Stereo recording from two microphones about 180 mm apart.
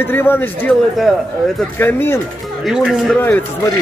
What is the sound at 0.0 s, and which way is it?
Speech, 10° left (ahead or behind).